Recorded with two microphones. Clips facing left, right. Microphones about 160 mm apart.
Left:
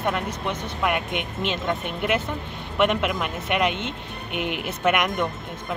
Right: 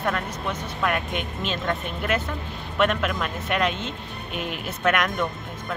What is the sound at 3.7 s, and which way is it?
Speech, 70° left (ahead or behind).